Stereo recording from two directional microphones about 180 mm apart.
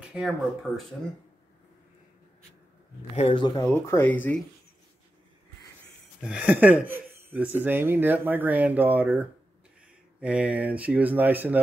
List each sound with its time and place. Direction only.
0.1 s speech: 5° right (ahead or behind)
3.2 s speech: 35° left (ahead or behind)
3.4 s speech: 15° left (ahead or behind)
6.2 s speech: 5° right (ahead or behind)